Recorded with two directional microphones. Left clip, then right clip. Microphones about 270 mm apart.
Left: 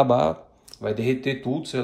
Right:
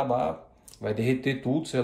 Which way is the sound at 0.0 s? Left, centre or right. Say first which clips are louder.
Left 7 dB; left.